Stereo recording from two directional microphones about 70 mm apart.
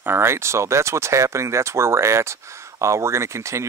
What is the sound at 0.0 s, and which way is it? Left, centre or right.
Speech, right.